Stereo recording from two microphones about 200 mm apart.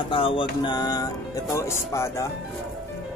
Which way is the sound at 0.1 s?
25° left (ahead or behind).